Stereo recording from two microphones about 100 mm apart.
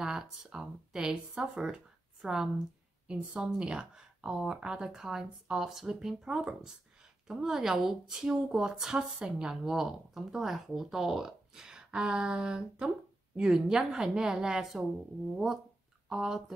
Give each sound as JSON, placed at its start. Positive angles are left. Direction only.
{"t": 0.0, "sound": "speech", "side_deg": -5}